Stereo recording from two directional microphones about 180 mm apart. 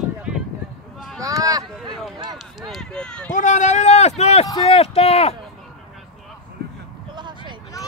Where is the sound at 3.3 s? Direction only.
45° left (ahead or behind).